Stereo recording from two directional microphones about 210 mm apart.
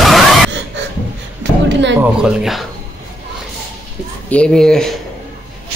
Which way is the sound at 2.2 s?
Centre (ahead or behind).